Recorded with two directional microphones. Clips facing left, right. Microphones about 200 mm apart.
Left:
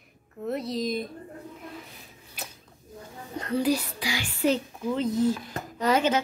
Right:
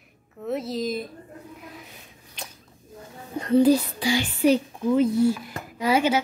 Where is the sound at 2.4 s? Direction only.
5° left (ahead or behind).